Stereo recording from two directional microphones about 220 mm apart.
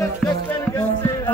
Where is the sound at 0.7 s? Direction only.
15° left (ahead or behind).